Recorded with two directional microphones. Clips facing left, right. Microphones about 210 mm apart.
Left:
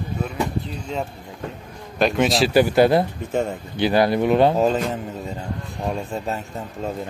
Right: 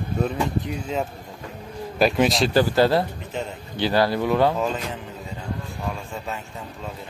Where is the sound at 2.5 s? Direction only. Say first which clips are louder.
Left 6 dB; 15° left (ahead or behind).